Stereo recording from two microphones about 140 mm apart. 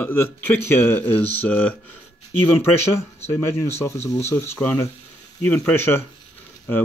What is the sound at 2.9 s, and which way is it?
Speech, 20° left (ahead or behind).